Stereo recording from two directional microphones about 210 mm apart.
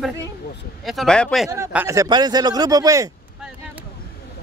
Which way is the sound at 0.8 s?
Centre (ahead or behind).